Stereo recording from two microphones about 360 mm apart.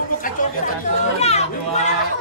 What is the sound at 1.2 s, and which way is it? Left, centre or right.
Speech, centre.